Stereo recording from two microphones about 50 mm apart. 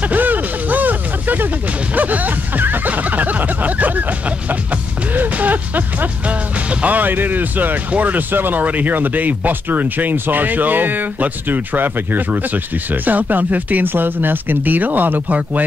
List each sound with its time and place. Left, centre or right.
0.1 s a sound: right
5.1 s music: right
6.8 s speech: right